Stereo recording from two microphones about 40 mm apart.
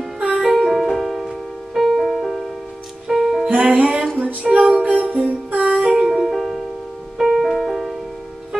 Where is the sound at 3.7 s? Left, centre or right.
Right.